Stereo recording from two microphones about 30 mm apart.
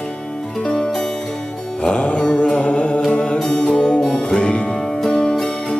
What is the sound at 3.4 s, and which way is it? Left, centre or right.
Music, left.